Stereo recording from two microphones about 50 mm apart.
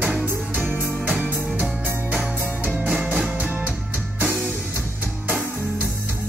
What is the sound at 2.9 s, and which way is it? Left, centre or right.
Music, centre.